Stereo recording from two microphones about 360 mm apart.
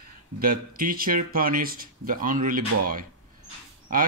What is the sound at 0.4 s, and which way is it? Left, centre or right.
Speech, right.